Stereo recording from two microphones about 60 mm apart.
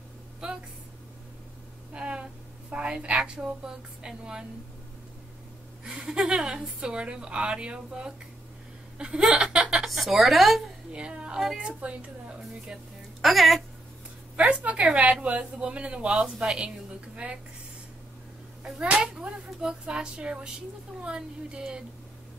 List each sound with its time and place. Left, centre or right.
2.0 s a sound: centre
2.7 s a woman's voice: centre
5.9 s a woman's voice: centre
9.8 s speech: centre
10.9 s a woman's voice: centre
13.2 s a woman's voice: centre
14.3 s a woman's voice: centre
18.6 s a woman's voice: centre